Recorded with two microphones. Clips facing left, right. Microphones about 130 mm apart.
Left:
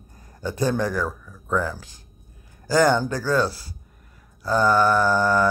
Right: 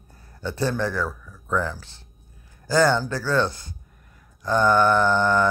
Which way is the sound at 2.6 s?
15° left (ahead or behind).